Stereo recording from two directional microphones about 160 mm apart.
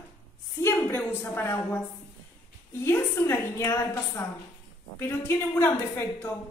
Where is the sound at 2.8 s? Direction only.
15° left (ahead or behind).